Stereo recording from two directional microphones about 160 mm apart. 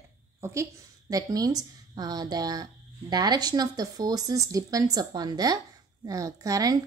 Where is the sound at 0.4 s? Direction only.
20° right (ahead or behind).